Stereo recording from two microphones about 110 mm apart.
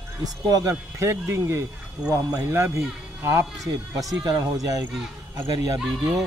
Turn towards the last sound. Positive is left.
turn(degrees=-10)  # may be behind; listen again after turning